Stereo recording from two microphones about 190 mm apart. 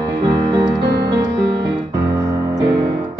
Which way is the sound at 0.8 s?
60° right (ahead or behind).